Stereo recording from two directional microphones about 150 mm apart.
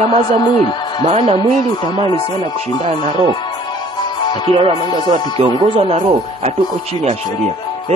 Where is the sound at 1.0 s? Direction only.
40° right (ahead or behind).